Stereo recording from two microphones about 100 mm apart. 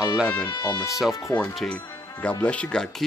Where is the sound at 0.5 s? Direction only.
45° left (ahead or behind).